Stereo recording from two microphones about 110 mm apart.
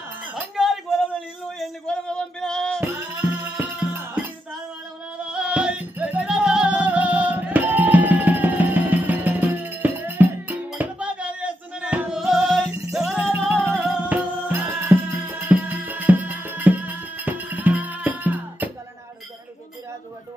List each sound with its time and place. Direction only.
0.2 s chink: 15° right (ahead or behind)
0.6 s a sound: 5° right (ahead or behind)
1.6 s a sound: 5° left (ahead or behind)
2.8 s music: 20° right (ahead or behind)
5.2 s music: 10° right (ahead or behind)
13.5 s music: 15° right (ahead or behind)